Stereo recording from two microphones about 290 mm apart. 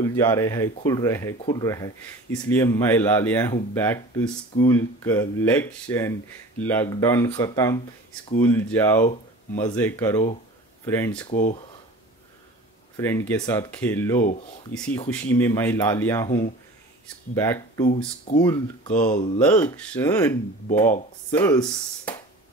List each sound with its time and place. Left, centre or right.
0.0 s speech: centre
11.2 s speech: left
12.9 s speech: centre
17.4 s speech: centre
17.8 s speech: left
18.4 s speech: centre
19.0 s speech: left
19.3 s speech: centre